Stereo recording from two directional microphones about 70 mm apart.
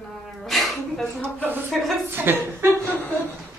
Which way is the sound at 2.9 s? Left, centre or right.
Left.